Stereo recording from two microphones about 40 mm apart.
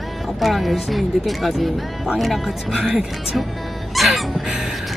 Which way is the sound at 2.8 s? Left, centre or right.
Centre.